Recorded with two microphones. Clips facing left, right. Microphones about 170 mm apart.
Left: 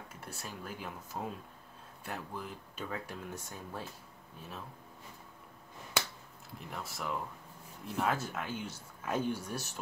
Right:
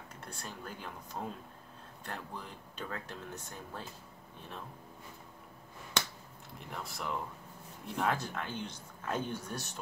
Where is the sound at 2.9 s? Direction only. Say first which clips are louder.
Left 3 dB; 10° left (ahead or behind).